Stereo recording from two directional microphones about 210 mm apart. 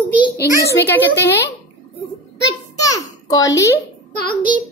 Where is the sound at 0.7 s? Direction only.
10° left (ahead or behind).